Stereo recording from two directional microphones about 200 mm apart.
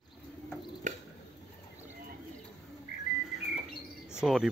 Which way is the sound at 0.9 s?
40° right (ahead or behind).